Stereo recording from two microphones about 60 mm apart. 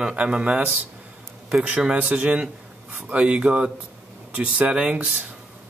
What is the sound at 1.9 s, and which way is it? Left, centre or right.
Speech, right.